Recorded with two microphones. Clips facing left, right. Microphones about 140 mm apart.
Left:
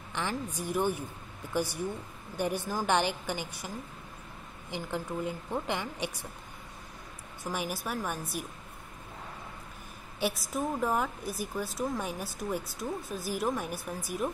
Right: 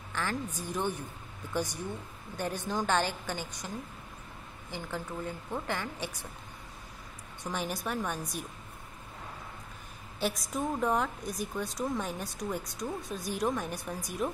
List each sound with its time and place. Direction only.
0.1 s a sound: 15° left (ahead or behind)
0.6 s a woman's voice: 10° left (ahead or behind)
7.4 s a woman's voice: 5° left (ahead or behind)
10.2 s a woman's voice: 5° left (ahead or behind)